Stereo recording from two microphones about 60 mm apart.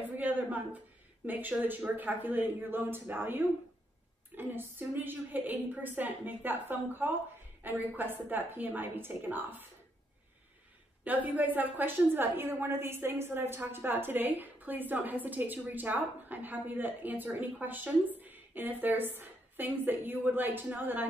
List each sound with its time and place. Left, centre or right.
0.2 s a woman's voice: right
11.1 s a woman's voice: right